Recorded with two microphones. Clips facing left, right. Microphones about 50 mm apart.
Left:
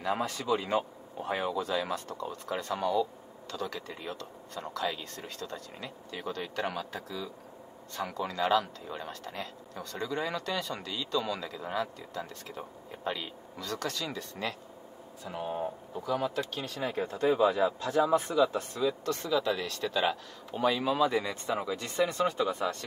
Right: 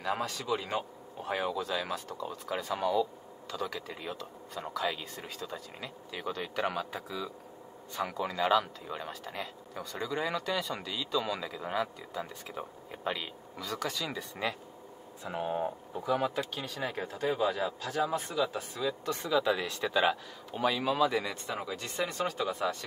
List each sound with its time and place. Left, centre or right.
0.0 s speech: centre
16.0 s speech: right
16.3 s speech: centre
19.0 s speech: centre
20.0 s speech: centre